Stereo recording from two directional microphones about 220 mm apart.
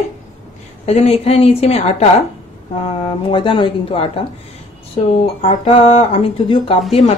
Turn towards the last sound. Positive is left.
turn(degrees=25)  # may be behind; listen again after turning